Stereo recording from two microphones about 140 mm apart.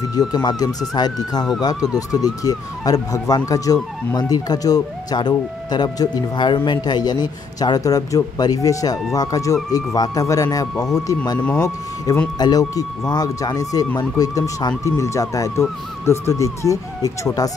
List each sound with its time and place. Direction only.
0.3 s speech: 30° left (ahead or behind)
12.4 s speech: 25° left (ahead or behind)